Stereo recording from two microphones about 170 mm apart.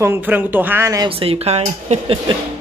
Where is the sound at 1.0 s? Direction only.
35° right (ahead or behind).